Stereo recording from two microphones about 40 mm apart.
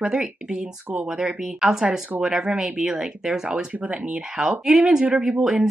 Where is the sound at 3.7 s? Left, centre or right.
Right.